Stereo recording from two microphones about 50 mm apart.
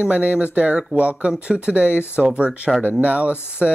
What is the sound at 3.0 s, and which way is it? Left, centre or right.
Speech, right.